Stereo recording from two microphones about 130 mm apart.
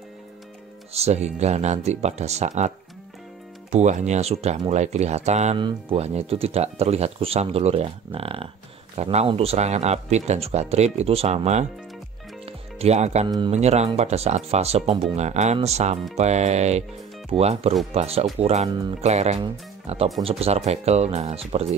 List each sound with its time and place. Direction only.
0.9 s speech: 55° right (ahead or behind)
3.7 s speech: 65° right (ahead or behind)
5.6 s speech: 35° right (ahead or behind)
5.9 s speech: 50° right (ahead or behind)
12.4 s music: 50° right (ahead or behind)
13.5 s speech: 55° right (ahead or behind)